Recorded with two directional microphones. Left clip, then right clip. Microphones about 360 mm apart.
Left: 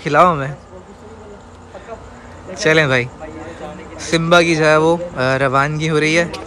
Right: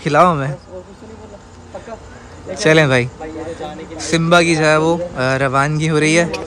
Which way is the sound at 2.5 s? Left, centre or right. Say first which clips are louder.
Right 1 dB; centre.